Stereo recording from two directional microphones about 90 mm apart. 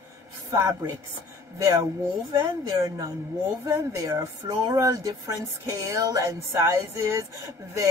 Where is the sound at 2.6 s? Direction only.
45° right (ahead or behind).